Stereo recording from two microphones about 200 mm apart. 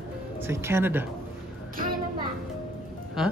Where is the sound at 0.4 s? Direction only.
15° right (ahead or behind).